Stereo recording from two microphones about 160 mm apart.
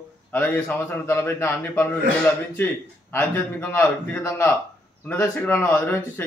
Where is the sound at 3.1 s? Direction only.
15° left (ahead or behind).